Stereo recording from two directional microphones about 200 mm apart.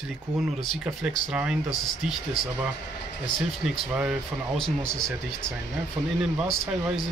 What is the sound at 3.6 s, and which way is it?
Speech, 5° right (ahead or behind).